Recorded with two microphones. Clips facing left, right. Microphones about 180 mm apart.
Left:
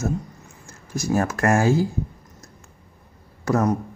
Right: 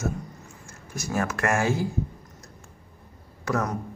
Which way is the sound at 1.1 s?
35° left (ahead or behind).